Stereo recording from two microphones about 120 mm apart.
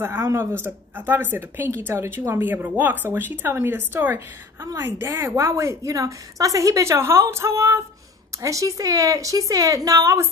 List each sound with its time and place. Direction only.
0.0 s a woman's voice: 20° right (ahead or behind)